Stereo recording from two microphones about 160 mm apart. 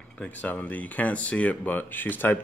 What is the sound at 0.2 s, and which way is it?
Speech, 10° left (ahead or behind).